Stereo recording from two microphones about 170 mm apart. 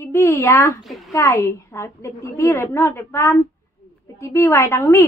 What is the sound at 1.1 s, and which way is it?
A woman's voice, 15° left (ahead or behind).